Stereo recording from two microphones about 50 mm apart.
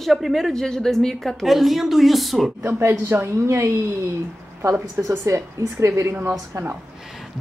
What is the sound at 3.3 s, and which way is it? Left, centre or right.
Speech, right.